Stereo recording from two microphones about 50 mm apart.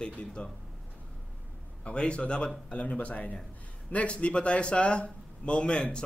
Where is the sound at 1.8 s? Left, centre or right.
Left.